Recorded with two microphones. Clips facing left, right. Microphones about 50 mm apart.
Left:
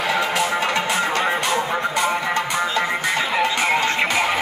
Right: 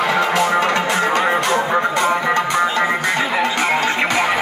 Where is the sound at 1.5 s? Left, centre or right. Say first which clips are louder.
Right 4 dB; right.